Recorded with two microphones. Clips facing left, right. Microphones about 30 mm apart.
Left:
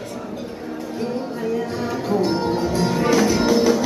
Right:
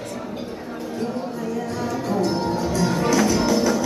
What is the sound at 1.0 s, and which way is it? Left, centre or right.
Music, left.